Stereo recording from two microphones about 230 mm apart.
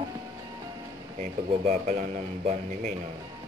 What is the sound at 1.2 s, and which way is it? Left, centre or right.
Speech, right.